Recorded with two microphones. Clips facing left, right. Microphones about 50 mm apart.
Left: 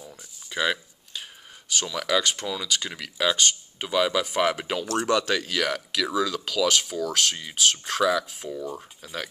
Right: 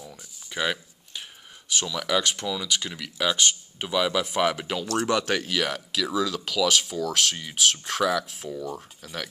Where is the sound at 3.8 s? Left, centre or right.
Centre.